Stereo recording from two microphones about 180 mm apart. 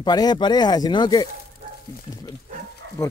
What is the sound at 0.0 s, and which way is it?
Speech, 20° left (ahead or behind).